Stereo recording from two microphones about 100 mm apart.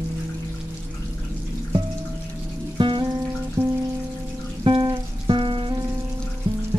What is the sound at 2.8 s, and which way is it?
Music, 55° right (ahead or behind).